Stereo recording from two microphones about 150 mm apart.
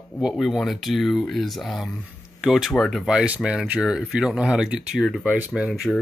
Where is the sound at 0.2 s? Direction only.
Centre (ahead or behind).